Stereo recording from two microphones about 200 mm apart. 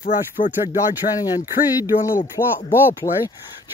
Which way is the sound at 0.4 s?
40° left (ahead or behind).